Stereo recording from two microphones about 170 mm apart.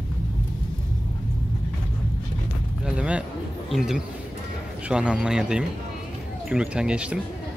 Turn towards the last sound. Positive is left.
turn(degrees=-5)  # may be behind; listen again after turning